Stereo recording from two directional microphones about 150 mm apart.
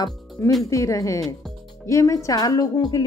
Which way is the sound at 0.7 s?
20° left (ahead or behind).